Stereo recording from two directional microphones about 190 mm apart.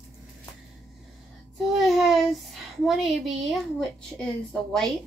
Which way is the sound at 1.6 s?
Centre (ahead or behind).